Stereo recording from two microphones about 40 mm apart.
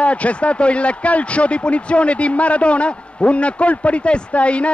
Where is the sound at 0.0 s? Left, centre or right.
Left.